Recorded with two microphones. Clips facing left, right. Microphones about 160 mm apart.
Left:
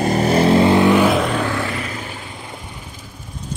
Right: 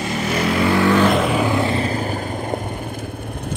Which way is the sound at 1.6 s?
30° right (ahead or behind).